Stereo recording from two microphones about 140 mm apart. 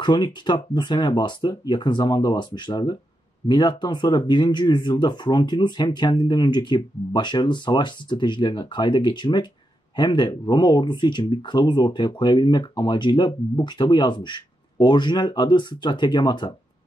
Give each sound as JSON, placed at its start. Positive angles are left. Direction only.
{"t": 0.0, "sound": "speech", "side_deg": 35}